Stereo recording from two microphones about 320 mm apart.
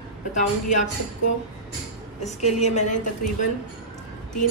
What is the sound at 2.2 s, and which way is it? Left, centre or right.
Speech, left.